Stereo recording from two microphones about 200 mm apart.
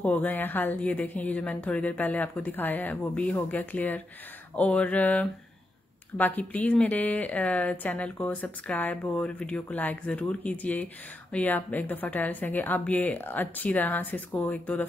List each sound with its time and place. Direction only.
0.0 s speech: 10° left (ahead or behind)